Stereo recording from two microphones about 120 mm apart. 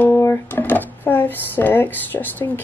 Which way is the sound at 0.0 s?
20° left (ahead or behind).